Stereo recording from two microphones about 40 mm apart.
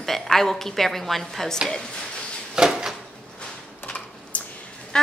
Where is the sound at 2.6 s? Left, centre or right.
Centre.